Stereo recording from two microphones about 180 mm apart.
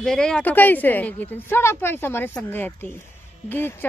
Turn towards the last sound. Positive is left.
turn(degrees=10)  # may be behind; listen again after turning